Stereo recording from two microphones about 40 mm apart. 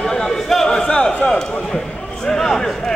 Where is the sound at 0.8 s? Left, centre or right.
Left.